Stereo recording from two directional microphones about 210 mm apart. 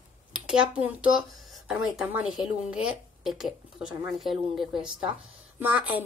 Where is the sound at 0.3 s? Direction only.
5° right (ahead or behind).